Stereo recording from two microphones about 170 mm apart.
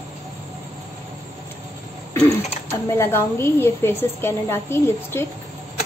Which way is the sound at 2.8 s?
15° left (ahead or behind).